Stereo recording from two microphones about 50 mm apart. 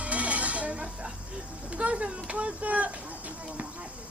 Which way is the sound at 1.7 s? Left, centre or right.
Right.